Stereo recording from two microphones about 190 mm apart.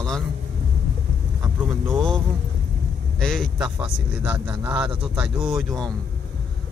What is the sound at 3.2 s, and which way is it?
Speech, centre (ahead or behind).